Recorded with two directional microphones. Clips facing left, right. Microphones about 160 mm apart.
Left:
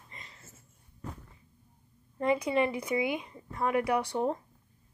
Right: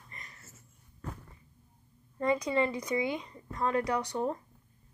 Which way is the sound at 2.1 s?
20° left (ahead or behind).